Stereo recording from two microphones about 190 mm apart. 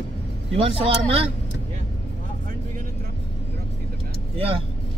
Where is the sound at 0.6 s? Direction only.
30° right (ahead or behind).